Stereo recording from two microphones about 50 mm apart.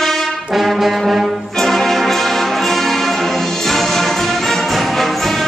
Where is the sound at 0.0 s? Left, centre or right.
Centre.